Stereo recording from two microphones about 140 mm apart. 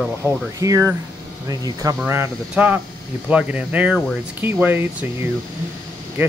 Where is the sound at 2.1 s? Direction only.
15° right (ahead or behind).